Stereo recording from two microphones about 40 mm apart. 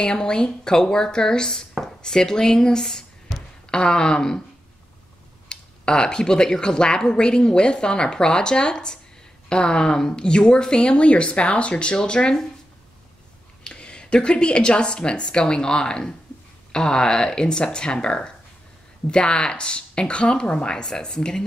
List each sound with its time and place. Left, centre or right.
0.0 s a woman's voice: left
5.5 s speech: left
13.7 s speech: left